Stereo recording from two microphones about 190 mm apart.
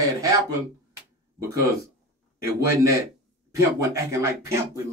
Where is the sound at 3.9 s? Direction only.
15° right (ahead or behind).